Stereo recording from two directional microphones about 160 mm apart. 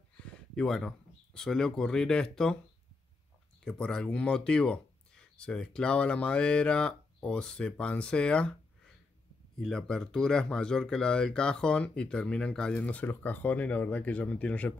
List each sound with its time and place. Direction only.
0.2 s a sound: 5° left (ahead or behind)
0.6 s speech: 5° left (ahead or behind)
3.6 s speech: 5° left (ahead or behind)